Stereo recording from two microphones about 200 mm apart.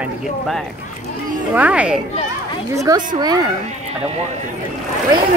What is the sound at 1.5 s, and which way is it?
A woman's voice, 5° right (ahead or behind).